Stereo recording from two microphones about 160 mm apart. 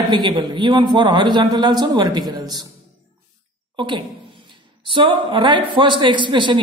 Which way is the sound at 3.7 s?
30° right (ahead or behind).